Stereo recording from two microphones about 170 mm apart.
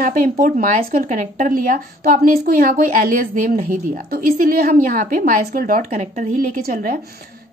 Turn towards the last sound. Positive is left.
turn(degrees=-55)  # may be behind; listen again after turning